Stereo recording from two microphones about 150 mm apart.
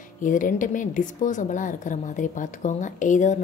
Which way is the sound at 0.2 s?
60° left (ahead or behind).